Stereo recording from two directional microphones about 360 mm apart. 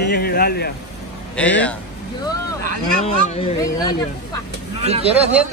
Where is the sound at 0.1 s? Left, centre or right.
Left.